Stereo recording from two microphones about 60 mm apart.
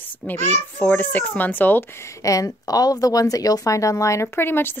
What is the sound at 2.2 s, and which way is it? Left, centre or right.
Speech, left.